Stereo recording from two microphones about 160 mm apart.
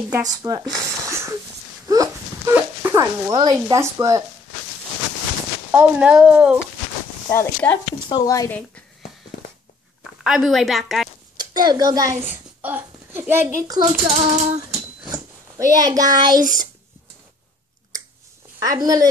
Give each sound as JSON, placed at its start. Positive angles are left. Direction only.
{"t": 0.1, "sound": "speech", "side_deg": -20}
{"t": 1.9, "sound": "a sound", "side_deg": -20}
{"t": 2.5, "sound": "dog", "side_deg": -15}
{"t": 3.5, "sound": "speech", "side_deg": -20}
{"t": 5.7, "sound": "speech", "side_deg": -10}
{"t": 7.2, "sound": "speech", "side_deg": 15}
{"t": 10.2, "sound": "a woman's voice", "side_deg": -5}
{"t": 11.3, "sound": "a woman's voice", "side_deg": -25}
{"t": 12.6, "sound": "a child's voice", "side_deg": -10}
{"t": 14.0, "sound": "female singing", "side_deg": -45}
{"t": 15.0, "sound": "speech", "side_deg": -20}
{"t": 18.6, "sound": "speech", "side_deg": -25}